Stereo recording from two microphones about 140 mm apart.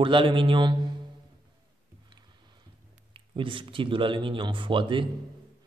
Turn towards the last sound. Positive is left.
turn(degrees=-35)  # may be behind; listen again after turning